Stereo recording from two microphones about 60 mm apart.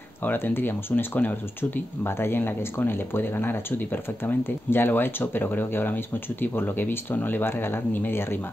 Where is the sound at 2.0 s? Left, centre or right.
Left.